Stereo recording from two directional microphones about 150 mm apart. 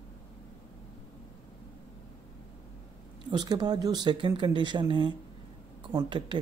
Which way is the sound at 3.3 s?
30° right (ahead or behind).